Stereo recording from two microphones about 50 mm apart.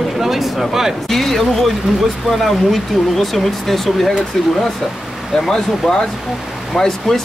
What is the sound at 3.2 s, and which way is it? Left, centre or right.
Speech, centre.